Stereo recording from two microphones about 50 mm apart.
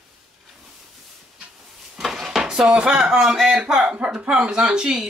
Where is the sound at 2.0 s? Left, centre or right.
Centre.